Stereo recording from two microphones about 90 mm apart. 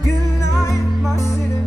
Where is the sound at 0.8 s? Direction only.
5° right (ahead or behind).